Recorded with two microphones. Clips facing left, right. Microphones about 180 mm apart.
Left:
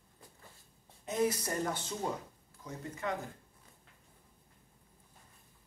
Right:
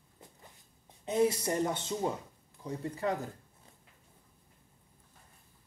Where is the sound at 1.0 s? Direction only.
25° right (ahead or behind).